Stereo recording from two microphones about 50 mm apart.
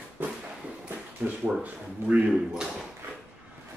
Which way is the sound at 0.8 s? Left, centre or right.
Right.